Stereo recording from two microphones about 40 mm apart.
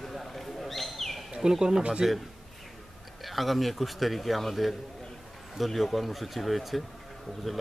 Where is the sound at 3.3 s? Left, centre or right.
Centre.